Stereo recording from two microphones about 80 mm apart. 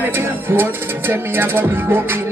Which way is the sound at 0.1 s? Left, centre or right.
Right.